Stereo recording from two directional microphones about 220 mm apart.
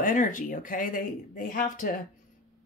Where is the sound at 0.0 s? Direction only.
35° left (ahead or behind).